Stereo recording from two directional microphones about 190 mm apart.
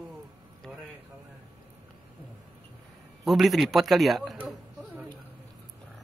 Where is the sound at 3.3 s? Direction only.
Centre (ahead or behind).